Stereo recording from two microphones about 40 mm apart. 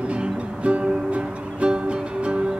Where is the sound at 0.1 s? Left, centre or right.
Right.